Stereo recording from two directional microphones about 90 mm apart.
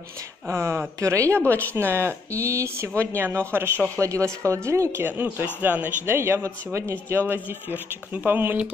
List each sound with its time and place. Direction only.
0.5 s speech: 25° right (ahead or behind)